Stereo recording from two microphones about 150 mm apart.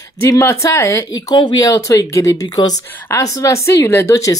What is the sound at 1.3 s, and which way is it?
A woman's voice, 30° left (ahead or behind).